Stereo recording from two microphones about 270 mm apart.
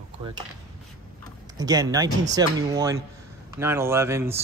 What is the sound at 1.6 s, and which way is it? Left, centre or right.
Speech, centre.